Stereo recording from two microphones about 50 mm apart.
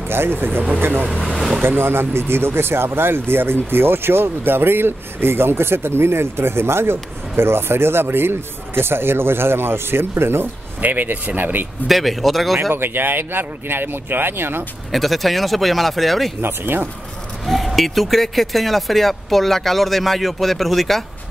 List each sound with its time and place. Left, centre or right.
0.1 s speech: right
1.1 s speech: centre
1.6 s speech: right
10.8 s speech: right
11.9 s speech: centre
12.7 s speech: right
14.9 s speech: centre
16.3 s speech: right
17.5 s speech: centre